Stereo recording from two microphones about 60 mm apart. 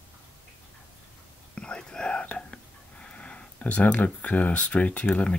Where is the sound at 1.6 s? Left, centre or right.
Centre.